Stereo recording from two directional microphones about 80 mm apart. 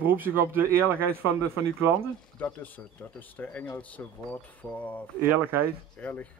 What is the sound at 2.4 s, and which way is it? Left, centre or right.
Speech, left.